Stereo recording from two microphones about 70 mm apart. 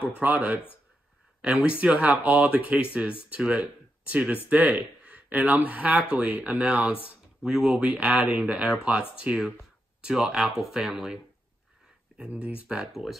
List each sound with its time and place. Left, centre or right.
0.0 s speech: right
7.4 s speech: centre
7.9 s speech: right; by 11.1 s centre
12.2 s speech: centre